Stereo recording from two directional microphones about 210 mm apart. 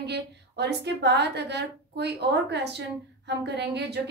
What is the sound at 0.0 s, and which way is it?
A woman's voice, 55° right (ahead or behind).